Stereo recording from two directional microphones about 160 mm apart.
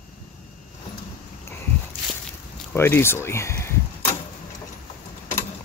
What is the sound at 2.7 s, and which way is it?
Speech, 15° left (ahead or behind).